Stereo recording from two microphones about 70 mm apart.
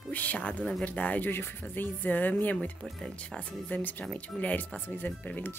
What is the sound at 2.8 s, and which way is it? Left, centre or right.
A woman's voice, centre.